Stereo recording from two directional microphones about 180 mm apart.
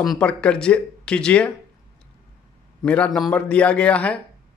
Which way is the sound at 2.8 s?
5° left (ahead or behind).